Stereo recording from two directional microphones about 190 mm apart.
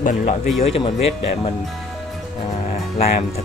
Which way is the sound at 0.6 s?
30° left (ahead or behind).